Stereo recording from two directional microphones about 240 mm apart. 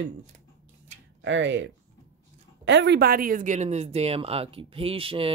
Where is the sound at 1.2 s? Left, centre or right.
Right.